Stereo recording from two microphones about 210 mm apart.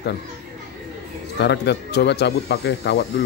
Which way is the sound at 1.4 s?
55° left (ahead or behind).